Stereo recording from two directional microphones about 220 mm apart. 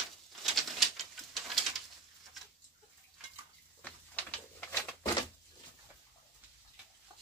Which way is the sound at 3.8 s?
5° left (ahead or behind).